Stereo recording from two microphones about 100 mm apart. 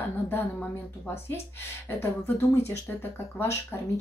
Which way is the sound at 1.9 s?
25° left (ahead or behind).